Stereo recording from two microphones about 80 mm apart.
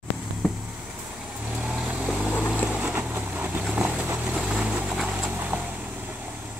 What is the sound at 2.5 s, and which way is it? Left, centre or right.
Boat, centre.